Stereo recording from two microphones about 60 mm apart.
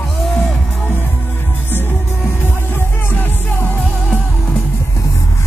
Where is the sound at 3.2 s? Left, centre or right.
Left.